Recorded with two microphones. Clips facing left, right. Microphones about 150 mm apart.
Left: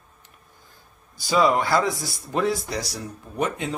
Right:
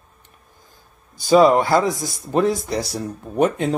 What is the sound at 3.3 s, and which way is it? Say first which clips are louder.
Speech: right 8 dB; 50° right (ahead or behind).